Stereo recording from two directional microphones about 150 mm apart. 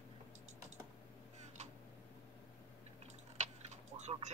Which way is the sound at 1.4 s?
50° right (ahead or behind).